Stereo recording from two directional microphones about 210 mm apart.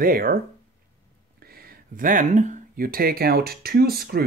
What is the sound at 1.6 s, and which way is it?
Speech, 40° right (ahead or behind).